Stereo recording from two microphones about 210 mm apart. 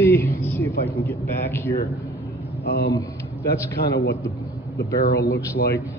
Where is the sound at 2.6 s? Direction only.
50° left (ahead or behind).